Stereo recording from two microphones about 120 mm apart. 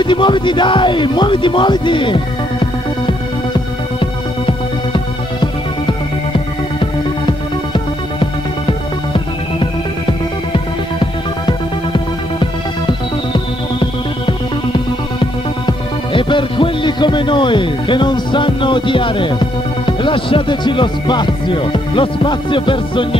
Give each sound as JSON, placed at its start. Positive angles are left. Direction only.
{"t": 0.0, "sound": "music", "side_deg": 40}
{"t": 4.0, "sound": "music", "side_deg": 45}
{"t": 19.9, "sound": "speech", "side_deg": 45}